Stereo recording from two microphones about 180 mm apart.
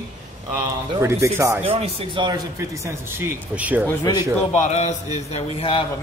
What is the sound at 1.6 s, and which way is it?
Speech, 35° right (ahead or behind).